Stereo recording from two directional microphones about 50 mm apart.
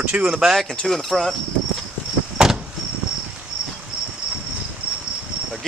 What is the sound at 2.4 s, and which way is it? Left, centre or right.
Vehicle, centre.